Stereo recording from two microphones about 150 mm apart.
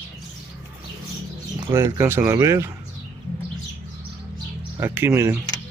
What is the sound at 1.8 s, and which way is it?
Speech, 15° right (ahead or behind).